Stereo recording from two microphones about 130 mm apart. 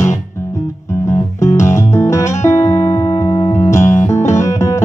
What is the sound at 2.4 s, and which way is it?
Music, 60° left (ahead or behind).